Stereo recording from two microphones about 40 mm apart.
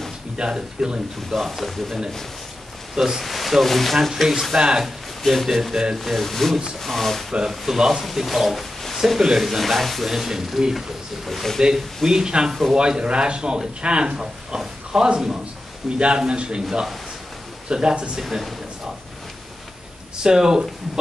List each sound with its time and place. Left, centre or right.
0.4 s speech: centre
1.3 s speech: centre
3.0 s speech: centre
4.8 s speech: centre
5.5 s speech: centre
7.4 s speech: centre
11.2 s speech: centre
11.7 s speech: centre
17.6 s speech: right
18.2 s speech: centre
20.2 s speech: centre